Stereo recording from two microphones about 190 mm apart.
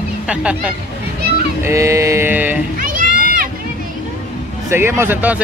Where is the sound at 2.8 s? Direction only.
45° right (ahead or behind).